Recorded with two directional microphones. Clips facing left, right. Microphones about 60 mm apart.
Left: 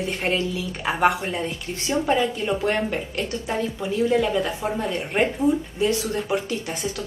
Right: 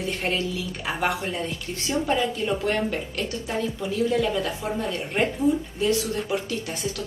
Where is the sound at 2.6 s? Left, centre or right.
Left.